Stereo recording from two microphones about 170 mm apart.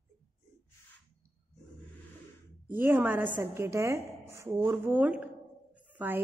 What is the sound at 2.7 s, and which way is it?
A woman's voice, 10° right (ahead or behind).